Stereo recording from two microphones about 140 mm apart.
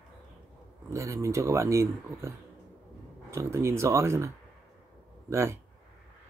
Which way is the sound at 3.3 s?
20° right (ahead or behind).